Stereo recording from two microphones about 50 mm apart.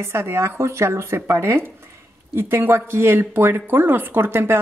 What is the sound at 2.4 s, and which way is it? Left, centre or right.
A woman's voice, right.